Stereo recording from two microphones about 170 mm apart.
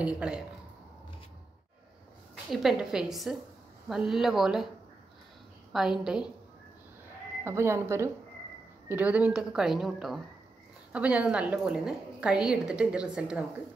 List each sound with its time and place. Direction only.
0.0 s a woman's voice: 5° right (ahead or behind)
2.5 s a woman's voice: 5° right (ahead or behind)
5.7 s a woman's voice: centre (ahead or behind)
7.4 s a woman's voice: 15° right (ahead or behind)